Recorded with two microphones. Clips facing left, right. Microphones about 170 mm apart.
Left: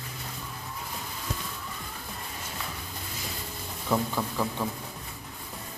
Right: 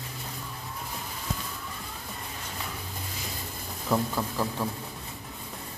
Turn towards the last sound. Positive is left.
turn(degrees=0)  # may be behind; listen again after turning